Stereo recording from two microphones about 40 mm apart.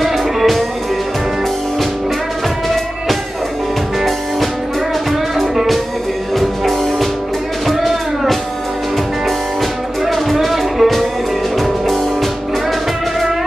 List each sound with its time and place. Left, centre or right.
0.0 s music: centre
5.4 s music: centre
9.6 s music: centre